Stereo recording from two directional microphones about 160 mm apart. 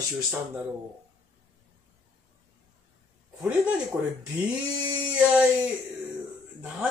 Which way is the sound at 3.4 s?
10° right (ahead or behind).